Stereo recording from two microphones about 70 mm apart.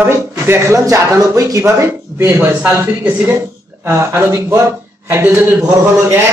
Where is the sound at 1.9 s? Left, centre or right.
Right.